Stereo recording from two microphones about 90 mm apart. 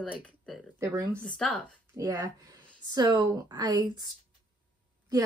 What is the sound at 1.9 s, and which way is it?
A woman's voice, 40° right (ahead or behind).